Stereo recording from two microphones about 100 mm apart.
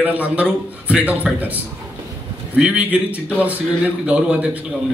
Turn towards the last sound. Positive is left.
turn(degrees=-10)  # may be behind; listen again after turning